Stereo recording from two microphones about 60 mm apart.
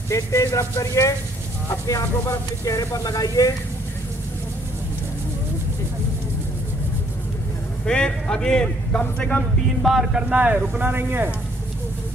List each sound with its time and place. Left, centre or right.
0.1 s speech: left
7.8 s a man's voice: centre
9.8 s music: centre
10.1 s speech: right
10.7 s speech: right